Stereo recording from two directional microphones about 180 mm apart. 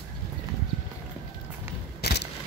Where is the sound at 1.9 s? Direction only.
65° left (ahead or behind).